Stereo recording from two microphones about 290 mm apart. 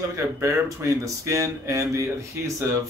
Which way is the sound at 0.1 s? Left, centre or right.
Centre.